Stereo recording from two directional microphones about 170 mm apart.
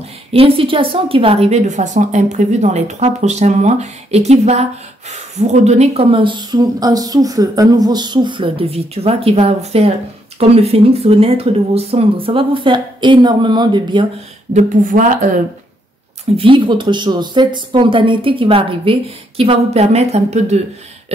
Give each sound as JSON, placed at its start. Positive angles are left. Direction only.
{"t": 0.3, "sound": "a woman's voice", "side_deg": -35}
{"t": 14.5, "sound": "speech", "side_deg": -45}
{"t": 16.3, "sound": "a woman's voice", "side_deg": -30}